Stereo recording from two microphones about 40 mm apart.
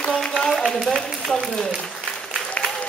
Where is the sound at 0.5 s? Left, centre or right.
Centre.